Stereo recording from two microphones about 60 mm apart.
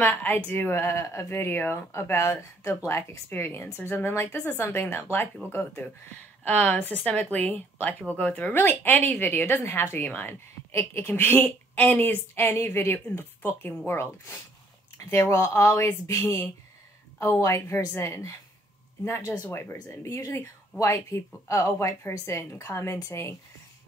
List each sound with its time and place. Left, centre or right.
0.0 s a woman's voice: left
1.8 s a woman's voice: left
6.4 s a woman's voice: left
8.5 s a woman's voice: left
9.9 s a woman's voice: left
10.7 s a woman's voice: left
12.4 s a woman's voice: left